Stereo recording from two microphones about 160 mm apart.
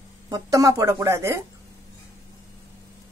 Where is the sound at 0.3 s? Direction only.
20° right (ahead or behind).